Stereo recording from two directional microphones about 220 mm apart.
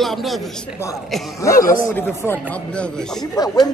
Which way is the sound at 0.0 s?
Centre (ahead or behind).